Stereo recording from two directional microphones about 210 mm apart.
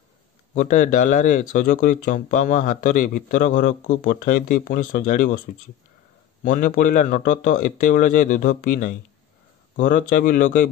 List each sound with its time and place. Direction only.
0.6 s speech: 35° left (ahead or behind)
6.4 s speech: 40° left (ahead or behind)